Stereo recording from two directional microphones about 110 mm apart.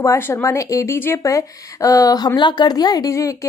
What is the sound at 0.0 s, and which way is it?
A woman's voice, 25° left (ahead or behind).